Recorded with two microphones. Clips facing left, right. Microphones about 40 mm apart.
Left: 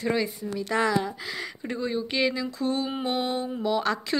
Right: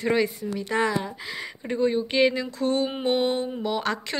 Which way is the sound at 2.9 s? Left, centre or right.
Right.